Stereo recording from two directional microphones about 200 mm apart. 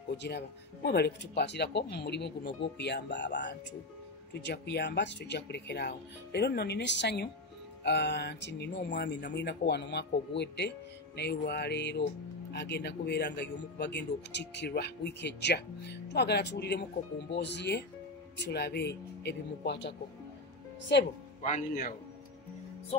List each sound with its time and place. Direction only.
0.1 s speech: 55° left (ahead or behind)
21.4 s speech: 40° left (ahead or behind)